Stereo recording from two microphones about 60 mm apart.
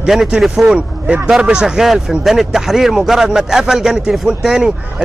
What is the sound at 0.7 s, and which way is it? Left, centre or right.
Speech, centre.